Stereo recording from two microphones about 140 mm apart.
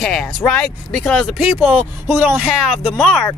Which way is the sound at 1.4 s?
10° right (ahead or behind).